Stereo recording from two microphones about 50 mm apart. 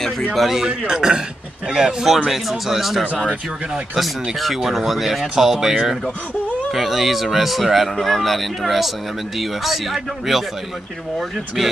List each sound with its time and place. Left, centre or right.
0.3 s speech: centre
0.6 s speech: centre
3.2 s speech: centre
4.6 s speech: centre